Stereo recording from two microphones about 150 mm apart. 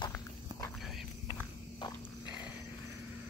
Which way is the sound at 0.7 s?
Centre (ahead or behind).